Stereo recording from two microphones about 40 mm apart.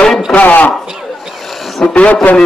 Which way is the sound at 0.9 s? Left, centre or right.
Centre.